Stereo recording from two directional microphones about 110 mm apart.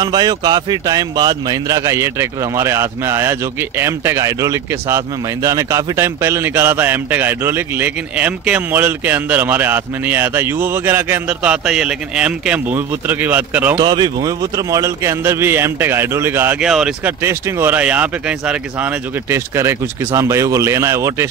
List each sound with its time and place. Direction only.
0.0 s speech: 35° right (ahead or behind); by 13.7 s 15° right (ahead or behind)
13.7 s speech: 40° right (ahead or behind); by 16.5 s 20° right (ahead or behind)
16.5 s speech: 5° right (ahead or behind)
17.0 s speech: 25° right (ahead or behind)
19.3 s speech: 25° right (ahead or behind)